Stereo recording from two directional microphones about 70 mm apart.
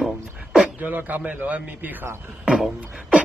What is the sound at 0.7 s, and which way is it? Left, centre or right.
A man's voice, right.